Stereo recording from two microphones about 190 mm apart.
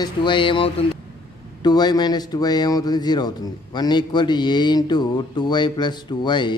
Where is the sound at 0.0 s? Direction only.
25° left (ahead or behind).